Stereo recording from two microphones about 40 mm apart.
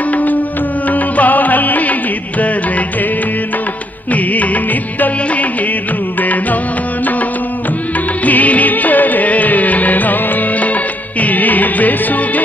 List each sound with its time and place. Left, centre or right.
0.1 s music: left
4.1 s music: left
8.3 s music: left